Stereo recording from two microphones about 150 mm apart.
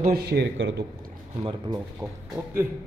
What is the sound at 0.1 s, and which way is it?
Speech, 90° right.